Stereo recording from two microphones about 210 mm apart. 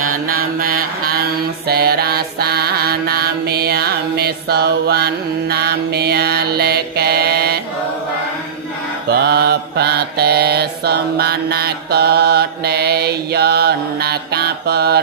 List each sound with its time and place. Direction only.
0.1 s mantra: 45° right (ahead or behind)
9.1 s mantra: 50° right (ahead or behind)